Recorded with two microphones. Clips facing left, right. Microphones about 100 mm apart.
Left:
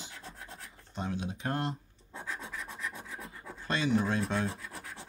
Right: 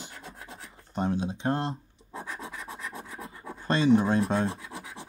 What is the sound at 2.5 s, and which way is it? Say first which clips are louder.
Rub: right 2 dB; centre (ahead or behind).